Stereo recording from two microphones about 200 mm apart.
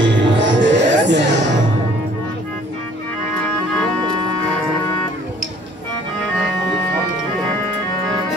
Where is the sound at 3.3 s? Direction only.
5° left (ahead or behind).